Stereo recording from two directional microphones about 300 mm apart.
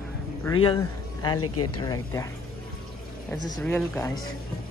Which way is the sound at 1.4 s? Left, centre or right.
Left.